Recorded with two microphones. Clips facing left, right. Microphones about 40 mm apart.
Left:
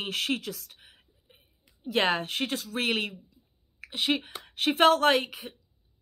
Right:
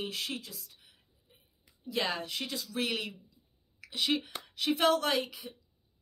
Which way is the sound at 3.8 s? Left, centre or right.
Left.